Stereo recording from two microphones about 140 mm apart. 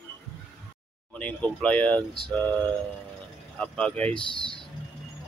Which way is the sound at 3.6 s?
10° left (ahead or behind).